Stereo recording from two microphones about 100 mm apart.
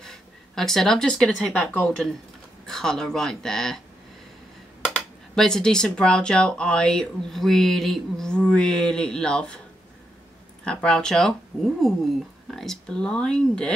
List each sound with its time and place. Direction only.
0.0 s speech: 5° left (ahead or behind)
4.9 s speech: 5° left (ahead or behind)
10.6 s speech: 10° left (ahead or behind)